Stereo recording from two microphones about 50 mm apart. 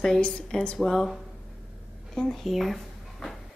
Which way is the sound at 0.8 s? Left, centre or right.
Centre.